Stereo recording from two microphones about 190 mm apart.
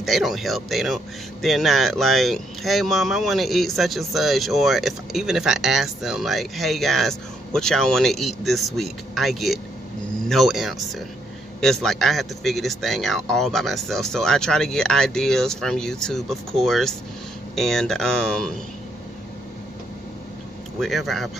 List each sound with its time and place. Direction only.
0.0 s speech: centre (ahead or behind)
20.8 s speech: centre (ahead or behind)